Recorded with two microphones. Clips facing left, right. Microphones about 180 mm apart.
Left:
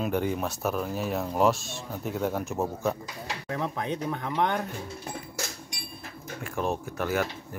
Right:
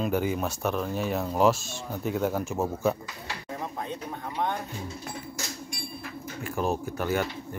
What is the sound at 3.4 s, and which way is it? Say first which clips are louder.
Speech: left 4 dB; 90° left.